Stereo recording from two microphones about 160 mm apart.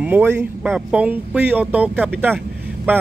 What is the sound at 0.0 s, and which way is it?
Speech, 10° right (ahead or behind).